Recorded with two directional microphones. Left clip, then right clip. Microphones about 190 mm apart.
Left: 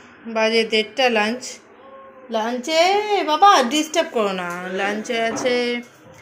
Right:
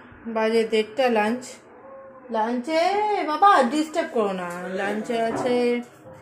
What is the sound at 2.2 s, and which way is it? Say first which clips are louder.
A woman's voice: left 2 dB; 20° left (ahead or behind).